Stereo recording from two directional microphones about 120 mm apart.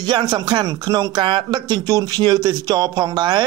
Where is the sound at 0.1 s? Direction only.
35° right (ahead or behind).